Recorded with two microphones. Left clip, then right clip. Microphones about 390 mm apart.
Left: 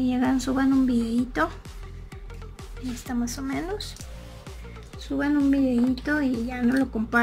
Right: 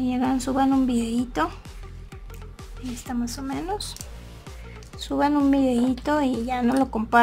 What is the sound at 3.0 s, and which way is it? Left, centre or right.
Speech, centre.